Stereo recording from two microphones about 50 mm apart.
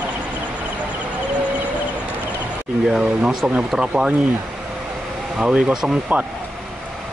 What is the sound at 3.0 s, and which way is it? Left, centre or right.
Speech, right.